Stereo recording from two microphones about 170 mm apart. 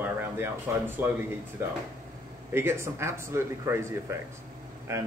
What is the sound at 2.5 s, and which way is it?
Speech, 15° right (ahead or behind).